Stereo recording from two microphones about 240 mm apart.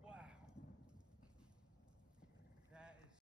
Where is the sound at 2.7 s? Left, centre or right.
Centre.